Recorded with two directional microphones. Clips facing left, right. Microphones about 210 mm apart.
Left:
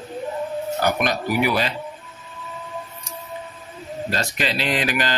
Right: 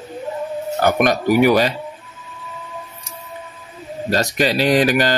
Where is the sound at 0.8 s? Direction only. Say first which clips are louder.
Right 7 dB; 50° right (ahead or behind).